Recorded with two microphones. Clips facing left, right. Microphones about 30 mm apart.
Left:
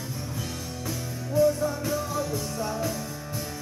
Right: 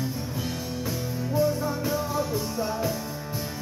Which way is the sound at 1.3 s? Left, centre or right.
Centre.